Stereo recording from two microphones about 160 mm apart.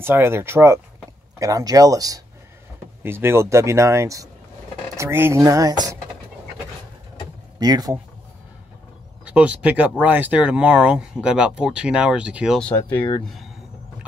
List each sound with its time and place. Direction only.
0.0 s speech: 15° right (ahead or behind)
7.5 s speech: 25° right (ahead or behind)
9.2 s speech: 10° right (ahead or behind)
12.5 s speech: 10° left (ahead or behind)